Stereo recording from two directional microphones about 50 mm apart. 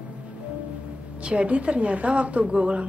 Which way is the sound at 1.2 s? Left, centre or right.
Right.